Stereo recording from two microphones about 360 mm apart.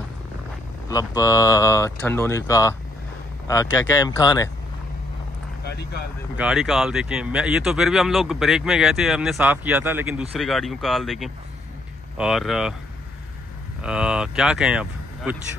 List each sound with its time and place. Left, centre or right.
0.8 s speech: centre
5.6 s speech: left
6.3 s speech: centre
13.8 s speech: centre